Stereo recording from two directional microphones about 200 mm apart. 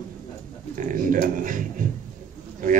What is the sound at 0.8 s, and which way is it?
Speech, 40° right (ahead or behind).